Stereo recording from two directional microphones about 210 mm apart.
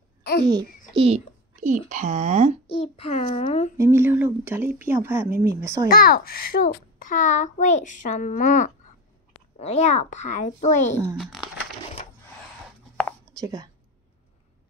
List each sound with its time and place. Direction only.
0.9 s a woman's voice: 30° right (ahead or behind)
2.7 s a child's voice: 30° left (ahead or behind)
3.7 s a woman's voice: 10° right (ahead or behind)
5.9 s a child's voice: 45° left (ahead or behind)
11.1 s speech: centre (ahead or behind)
13.4 s speech: 15° right (ahead or behind)